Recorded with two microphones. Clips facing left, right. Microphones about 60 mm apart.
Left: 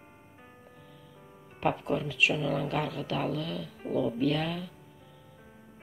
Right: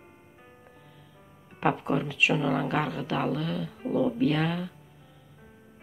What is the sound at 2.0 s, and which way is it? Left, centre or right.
Speech, right.